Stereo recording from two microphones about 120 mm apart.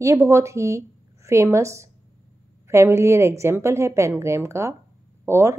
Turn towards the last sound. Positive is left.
turn(degrees=-20)  # may be behind; listen again after turning